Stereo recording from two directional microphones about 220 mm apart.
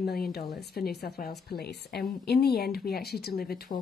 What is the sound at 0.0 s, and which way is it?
A woman's voice, 45° left (ahead or behind).